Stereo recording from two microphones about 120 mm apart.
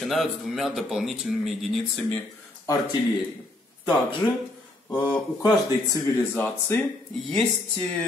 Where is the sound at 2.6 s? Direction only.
30° left (ahead or behind).